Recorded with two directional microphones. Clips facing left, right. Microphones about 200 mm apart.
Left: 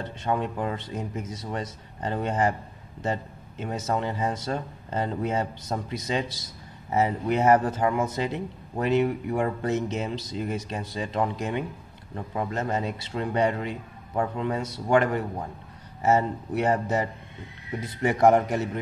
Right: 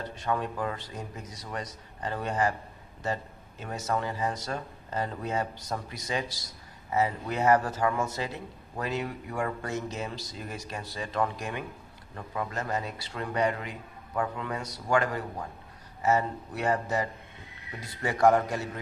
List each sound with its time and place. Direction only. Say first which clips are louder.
0.0 s speech: left 3 dB; 25° left (ahead or behind)